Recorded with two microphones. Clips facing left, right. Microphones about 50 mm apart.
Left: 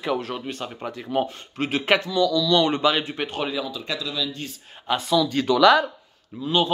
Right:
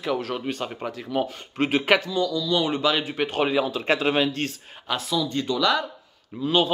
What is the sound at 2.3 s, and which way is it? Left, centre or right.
Speech, left.